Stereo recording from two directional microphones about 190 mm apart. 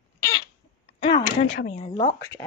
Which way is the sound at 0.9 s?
30° left (ahead or behind).